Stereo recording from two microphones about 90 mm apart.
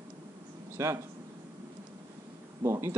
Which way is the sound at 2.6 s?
30° right (ahead or behind).